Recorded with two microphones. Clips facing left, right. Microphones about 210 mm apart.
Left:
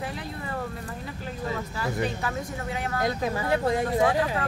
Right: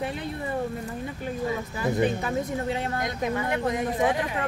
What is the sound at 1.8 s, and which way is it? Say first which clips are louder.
Speech: right 6 dB; 20° right (ahead or behind).